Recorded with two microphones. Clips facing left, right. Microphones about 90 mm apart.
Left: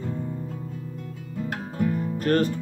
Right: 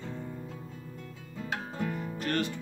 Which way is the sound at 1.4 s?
5° left (ahead or behind).